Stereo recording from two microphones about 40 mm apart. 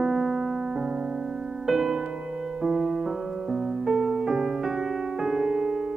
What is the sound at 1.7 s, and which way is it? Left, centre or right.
Music, centre.